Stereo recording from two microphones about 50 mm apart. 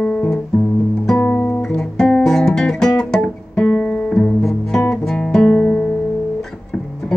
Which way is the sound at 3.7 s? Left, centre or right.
Left.